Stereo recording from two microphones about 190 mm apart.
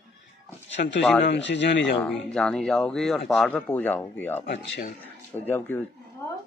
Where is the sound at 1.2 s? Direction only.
70° left (ahead or behind).